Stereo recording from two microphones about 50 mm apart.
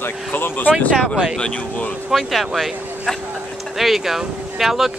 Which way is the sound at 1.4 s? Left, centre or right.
Left.